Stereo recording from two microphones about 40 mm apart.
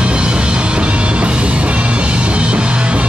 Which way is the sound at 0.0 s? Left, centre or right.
Right.